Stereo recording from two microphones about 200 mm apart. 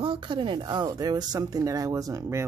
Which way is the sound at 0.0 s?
25° right (ahead or behind).